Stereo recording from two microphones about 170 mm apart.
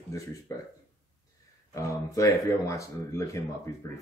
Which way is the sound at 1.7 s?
20° left (ahead or behind).